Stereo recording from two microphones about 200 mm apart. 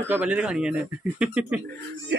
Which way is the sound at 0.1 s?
5° right (ahead or behind).